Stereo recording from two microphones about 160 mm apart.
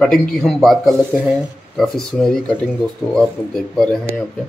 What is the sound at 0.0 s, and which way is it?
Speech, 5° left (ahead or behind).